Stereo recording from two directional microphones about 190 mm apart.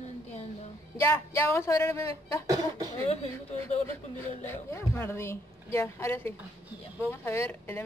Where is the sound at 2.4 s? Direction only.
20° right (ahead or behind).